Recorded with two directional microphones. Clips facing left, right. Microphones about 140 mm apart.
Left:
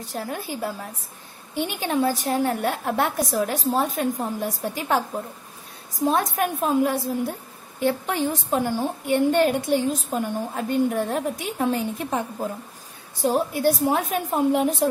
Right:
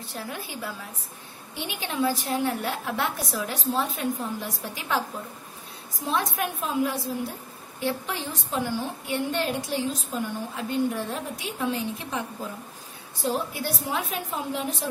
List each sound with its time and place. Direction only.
0.1 s a woman's voice: 40° left (ahead or behind)